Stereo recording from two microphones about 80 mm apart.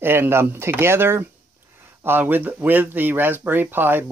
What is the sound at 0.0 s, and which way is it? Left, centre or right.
Speech, right.